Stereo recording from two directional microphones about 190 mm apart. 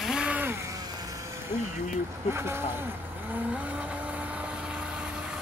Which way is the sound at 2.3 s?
15° right (ahead or behind).